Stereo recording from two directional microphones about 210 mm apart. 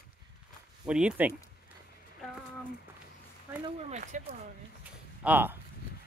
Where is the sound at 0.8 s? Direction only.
5° right (ahead or behind).